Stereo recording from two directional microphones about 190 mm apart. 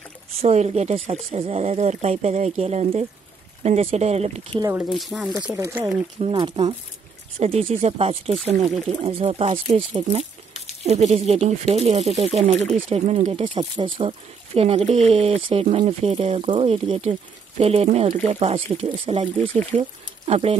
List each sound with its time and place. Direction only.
0.4 s speech: 35° right (ahead or behind)
4.6 s speech: 15° right (ahead or behind)
4.9 s speech: centre (ahead or behind)
5.6 s speech: 15° right (ahead or behind)
6.1 s speech: 25° right (ahead or behind)